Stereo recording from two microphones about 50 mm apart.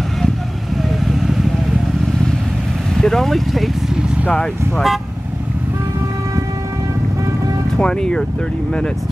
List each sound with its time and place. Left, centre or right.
3.0 s speech: centre
4.3 s speech: centre
7.8 s speech: centre